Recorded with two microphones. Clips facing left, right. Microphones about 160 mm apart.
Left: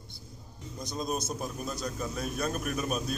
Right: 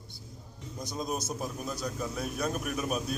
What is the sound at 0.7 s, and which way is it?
A man's voice, 10° right (ahead or behind).